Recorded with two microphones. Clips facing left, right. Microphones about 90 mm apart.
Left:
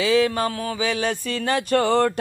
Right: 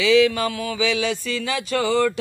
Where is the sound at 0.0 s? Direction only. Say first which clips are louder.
Right 2 dB; 40° left (ahead or behind).